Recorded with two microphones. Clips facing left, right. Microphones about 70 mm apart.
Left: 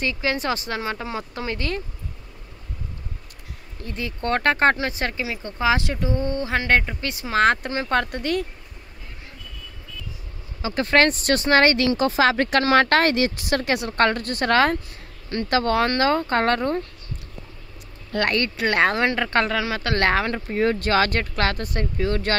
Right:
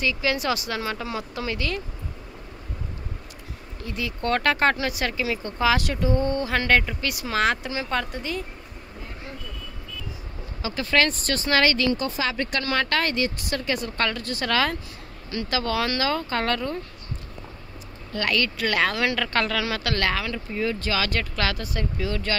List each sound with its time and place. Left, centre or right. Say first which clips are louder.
0.0 s speech: even; left
3.8 s speech: even; left
7.4 s speech: left 6 dB; left
10.7 s speech: left 4 dB; left
11.9 s speech: left 7 dB; left
18.1 s speech: left 3 dB; left
20.1 s speech: left 5 dB; left